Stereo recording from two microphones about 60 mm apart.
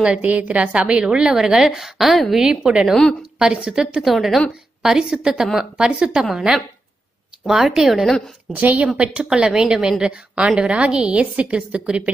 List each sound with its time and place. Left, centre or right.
0.0 s a woman's voice: right
1.0 s a woman's voice: centre
2.4 s a woman's voice: centre
8.5 s a woman's voice: right